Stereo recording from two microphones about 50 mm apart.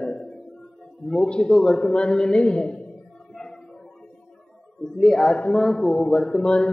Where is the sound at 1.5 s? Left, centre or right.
Centre.